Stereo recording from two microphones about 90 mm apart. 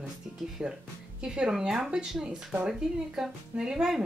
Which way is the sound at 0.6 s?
5° right (ahead or behind).